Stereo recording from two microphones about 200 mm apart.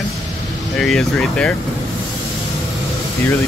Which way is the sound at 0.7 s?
Centre (ahead or behind).